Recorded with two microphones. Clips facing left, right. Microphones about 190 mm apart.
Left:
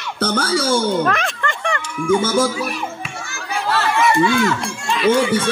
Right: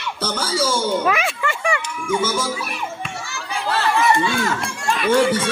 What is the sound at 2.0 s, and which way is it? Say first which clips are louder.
Speech: left 6 dB; 55° left (ahead or behind).